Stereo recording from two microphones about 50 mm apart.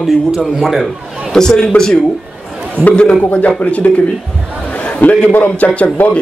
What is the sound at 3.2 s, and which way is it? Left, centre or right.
Speech, left.